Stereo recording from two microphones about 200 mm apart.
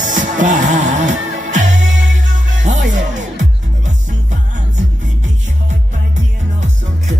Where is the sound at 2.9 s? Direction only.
40° right (ahead or behind).